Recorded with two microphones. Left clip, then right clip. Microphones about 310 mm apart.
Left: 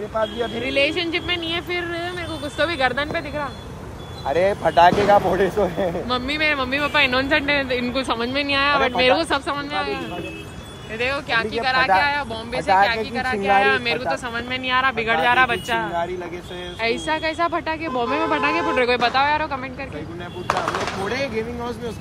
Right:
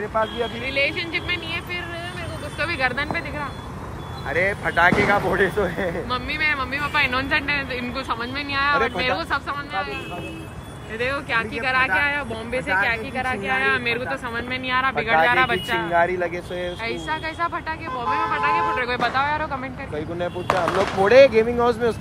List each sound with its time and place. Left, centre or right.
0.2 s speech: centre
4.3 s speech: left
11.0 s speech: centre
21.1 s speech: centre